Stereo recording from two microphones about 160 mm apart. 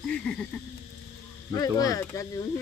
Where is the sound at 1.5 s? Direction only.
20° left (ahead or behind).